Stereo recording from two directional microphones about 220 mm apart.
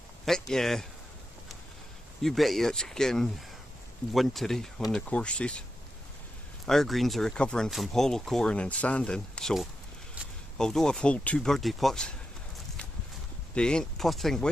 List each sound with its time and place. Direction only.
0.2 s speech: centre (ahead or behind)
2.2 s speech: centre (ahead or behind)
6.6 s speech: centre (ahead or behind)
13.6 s speech: 5° left (ahead or behind)